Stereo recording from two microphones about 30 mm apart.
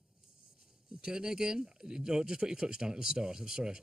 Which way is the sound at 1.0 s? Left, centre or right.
Right.